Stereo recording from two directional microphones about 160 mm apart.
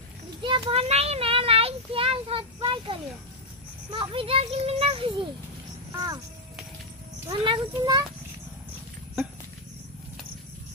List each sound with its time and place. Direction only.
0.4 s speech: 35° right (ahead or behind)
7.2 s speech: 30° right (ahead or behind)